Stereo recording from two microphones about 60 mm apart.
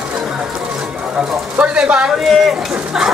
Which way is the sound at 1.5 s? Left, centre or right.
Centre.